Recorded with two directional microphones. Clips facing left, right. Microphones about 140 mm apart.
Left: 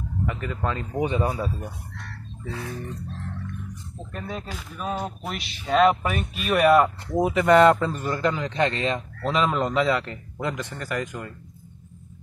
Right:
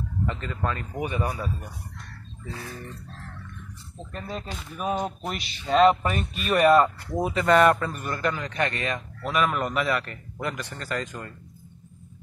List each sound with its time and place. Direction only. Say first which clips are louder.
0.3 s a man's voice: left 3 dB; 15° left (ahead or behind)
4.1 s speech: left 1 dB; 5° left (ahead or behind)
7.2 s a man's voice: left 3 dB; 20° left (ahead or behind)